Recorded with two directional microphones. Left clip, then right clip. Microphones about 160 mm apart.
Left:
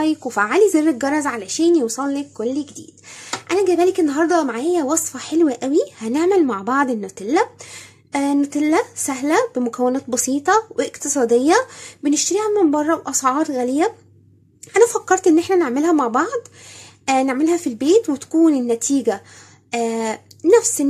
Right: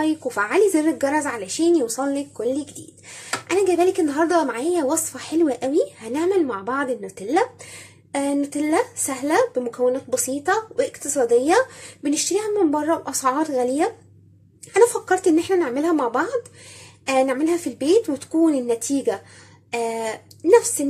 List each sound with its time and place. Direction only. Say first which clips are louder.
0.0 s speech: left 3 dB; 30° left (ahead or behind)